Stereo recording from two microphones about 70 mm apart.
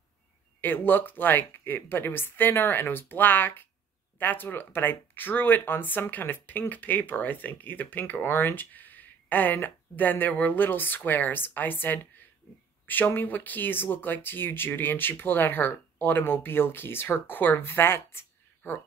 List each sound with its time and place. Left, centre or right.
0.6 s speech: left